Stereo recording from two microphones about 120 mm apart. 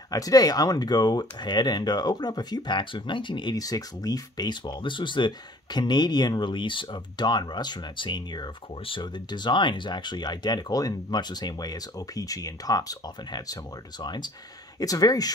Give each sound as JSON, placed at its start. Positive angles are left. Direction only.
{"t": 0.1, "sound": "speech", "side_deg": 30}